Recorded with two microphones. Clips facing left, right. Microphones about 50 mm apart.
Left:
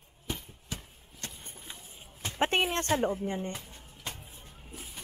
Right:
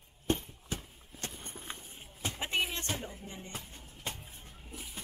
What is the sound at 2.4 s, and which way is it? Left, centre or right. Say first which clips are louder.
Speech: left 7 dB; left.